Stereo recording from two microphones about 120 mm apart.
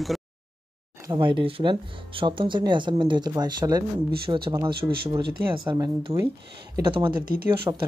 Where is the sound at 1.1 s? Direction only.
45° right (ahead or behind).